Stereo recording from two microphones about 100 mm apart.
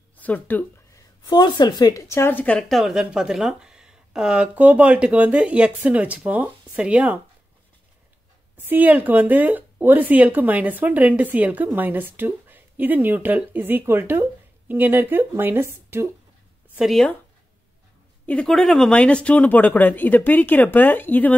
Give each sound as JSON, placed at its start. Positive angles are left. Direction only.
{"t": 0.2, "sound": "speech", "side_deg": 15}
{"t": 0.9, "sound": "speech", "side_deg": 40}
{"t": 2.7, "sound": "speech", "side_deg": -5}
{"t": 8.5, "sound": "speech", "side_deg": -20}
{"t": 16.7, "sound": "speech", "side_deg": 0}
{"t": 18.2, "sound": "speech", "side_deg": 15}
{"t": 18.5, "sound": "speech", "side_deg": 5}